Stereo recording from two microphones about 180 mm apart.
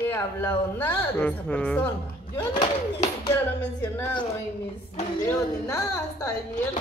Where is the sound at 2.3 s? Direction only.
20° left (ahead or behind).